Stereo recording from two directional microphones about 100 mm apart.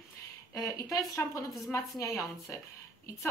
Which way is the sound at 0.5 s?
30° left (ahead or behind).